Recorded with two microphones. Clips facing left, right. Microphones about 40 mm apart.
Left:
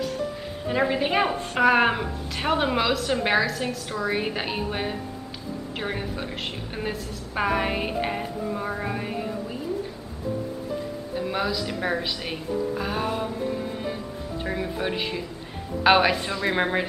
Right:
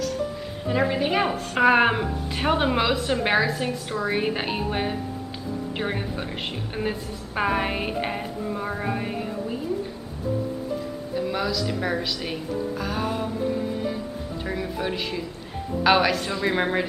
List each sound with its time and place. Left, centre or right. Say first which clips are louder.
0.7 s speech: even; centre
1.5 s a woman's voice: right 2 dB; centre
11.1 s speech: right 1 dB; centre
16.3 s a woman's voice: right 1 dB; centre